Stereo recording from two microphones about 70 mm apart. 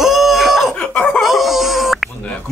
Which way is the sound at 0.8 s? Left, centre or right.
Centre.